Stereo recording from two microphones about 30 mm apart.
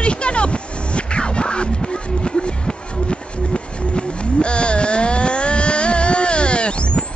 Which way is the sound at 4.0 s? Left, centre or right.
Left.